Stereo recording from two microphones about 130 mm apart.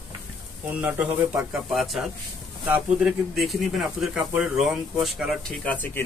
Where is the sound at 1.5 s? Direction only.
Centre (ahead or behind).